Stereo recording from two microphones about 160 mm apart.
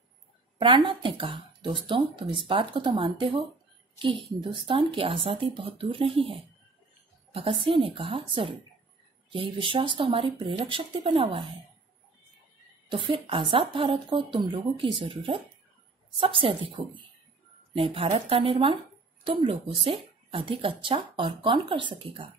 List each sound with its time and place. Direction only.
0.6 s speech: 30° right (ahead or behind)
7.3 s speech: 35° right (ahead or behind)
12.9 s speech: 30° right (ahead or behind)